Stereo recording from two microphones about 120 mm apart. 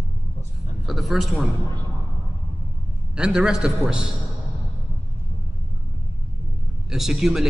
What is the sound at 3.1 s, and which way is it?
Speech, 5° right (ahead or behind).